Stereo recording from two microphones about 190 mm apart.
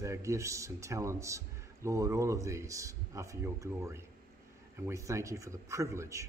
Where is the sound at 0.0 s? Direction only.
15° right (ahead or behind).